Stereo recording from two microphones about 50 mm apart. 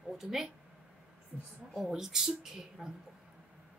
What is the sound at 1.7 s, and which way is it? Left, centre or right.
A woman's voice, centre.